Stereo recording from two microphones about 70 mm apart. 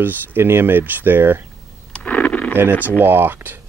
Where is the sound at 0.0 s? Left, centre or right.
Right.